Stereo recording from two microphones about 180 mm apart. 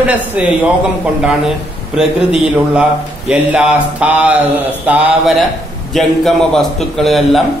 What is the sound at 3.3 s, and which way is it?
A man's voice, 5° right (ahead or behind).